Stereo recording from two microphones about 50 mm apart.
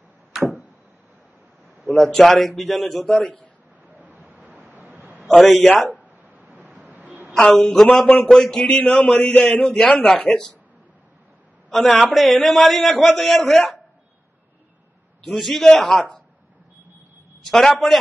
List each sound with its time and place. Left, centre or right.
2.0 s a man's voice: centre
4.0 s a sound: right
5.2 s a man's voice: centre
5.9 s a sound: right
7.4 s a man's voice: centre
8.5 s a man's voice: left
11.7 s a man's voice: centre
15.2 s a man's voice: centre
17.5 s a man's voice: centre